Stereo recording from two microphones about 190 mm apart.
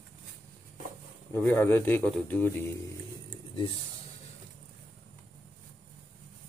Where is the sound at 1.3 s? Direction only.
10° left (ahead or behind).